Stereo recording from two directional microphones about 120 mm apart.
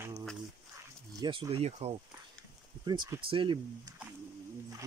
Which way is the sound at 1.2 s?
40° right (ahead or behind).